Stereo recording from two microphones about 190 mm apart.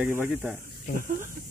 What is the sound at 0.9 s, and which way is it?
Speech, 45° left (ahead or behind).